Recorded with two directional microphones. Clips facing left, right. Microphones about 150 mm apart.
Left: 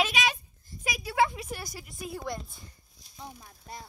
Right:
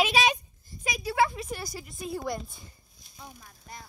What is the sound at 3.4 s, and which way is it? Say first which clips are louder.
Speech: left 2 dB; 30° left (ahead or behind).